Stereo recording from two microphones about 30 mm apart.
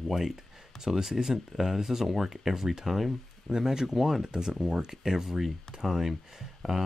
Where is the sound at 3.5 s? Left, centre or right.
Centre.